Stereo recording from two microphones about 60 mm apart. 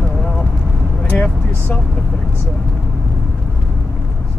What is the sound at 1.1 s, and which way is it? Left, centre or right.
Vehicle, left.